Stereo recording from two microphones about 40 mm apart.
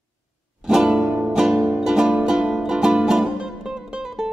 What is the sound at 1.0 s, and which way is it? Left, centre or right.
Music, right.